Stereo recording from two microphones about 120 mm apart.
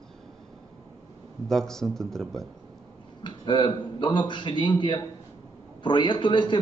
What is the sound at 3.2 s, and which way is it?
A man's voice, 40° left (ahead or behind).